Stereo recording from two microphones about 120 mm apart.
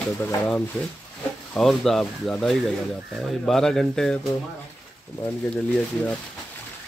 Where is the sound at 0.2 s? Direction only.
15° left (ahead or behind).